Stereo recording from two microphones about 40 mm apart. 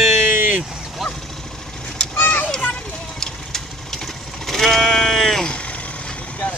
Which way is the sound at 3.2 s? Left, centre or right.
Centre.